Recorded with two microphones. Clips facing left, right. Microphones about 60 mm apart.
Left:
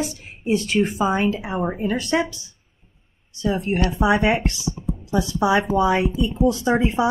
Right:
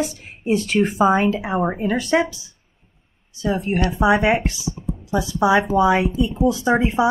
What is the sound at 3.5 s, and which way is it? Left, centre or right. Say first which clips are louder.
Speech: right 2 dB; centre.